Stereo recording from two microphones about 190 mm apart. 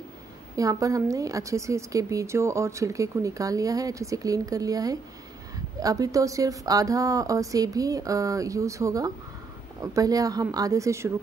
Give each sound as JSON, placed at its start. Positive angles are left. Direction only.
{"t": 0.6, "sound": "a woman's voice", "side_deg": -15}